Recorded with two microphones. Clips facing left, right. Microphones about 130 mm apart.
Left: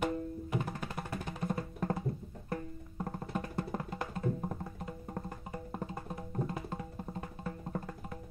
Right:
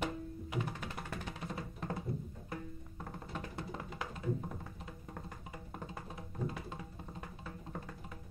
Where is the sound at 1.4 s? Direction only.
45° left (ahead or behind).